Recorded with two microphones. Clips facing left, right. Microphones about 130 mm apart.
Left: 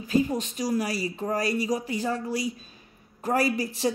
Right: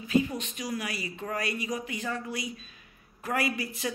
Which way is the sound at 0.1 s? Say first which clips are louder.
Left 2 dB; 35° left (ahead or behind).